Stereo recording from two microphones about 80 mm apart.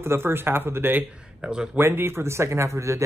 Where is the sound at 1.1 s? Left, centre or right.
Centre.